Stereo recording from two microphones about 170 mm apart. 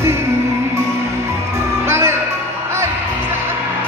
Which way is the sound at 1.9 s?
15° right (ahead or behind).